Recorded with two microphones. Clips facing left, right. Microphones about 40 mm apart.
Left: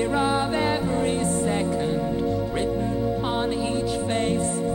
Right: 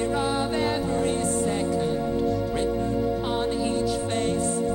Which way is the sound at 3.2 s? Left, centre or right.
Left.